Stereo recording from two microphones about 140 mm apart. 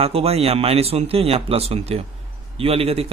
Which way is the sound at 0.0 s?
45° right (ahead or behind).